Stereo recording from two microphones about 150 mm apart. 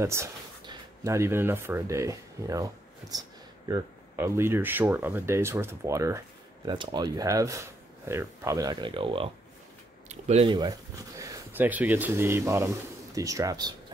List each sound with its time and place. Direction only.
0.0 s speech: 20° right (ahead or behind); by 9.3 s 35° right (ahead or behind)
10.0 s a sound: 45° right (ahead or behind)
10.5 s speech: 25° right (ahead or behind)